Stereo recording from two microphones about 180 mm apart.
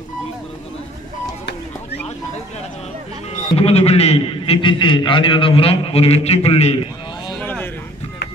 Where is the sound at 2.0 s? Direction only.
35° left (ahead or behind).